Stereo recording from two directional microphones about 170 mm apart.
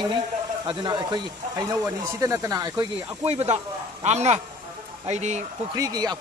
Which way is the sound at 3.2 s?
40° right (ahead or behind).